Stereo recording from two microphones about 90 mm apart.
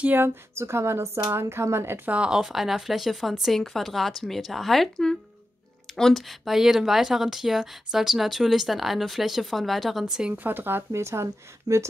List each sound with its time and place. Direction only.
0.0 s speech: 20° right (ahead or behind)
2.0 s speech: 10° right (ahead or behind)
10.3 s speech: 20° right (ahead or behind)